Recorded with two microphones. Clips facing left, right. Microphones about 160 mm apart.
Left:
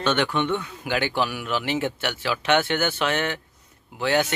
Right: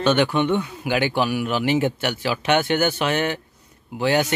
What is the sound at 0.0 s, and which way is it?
Speech, 10° right (ahead or behind).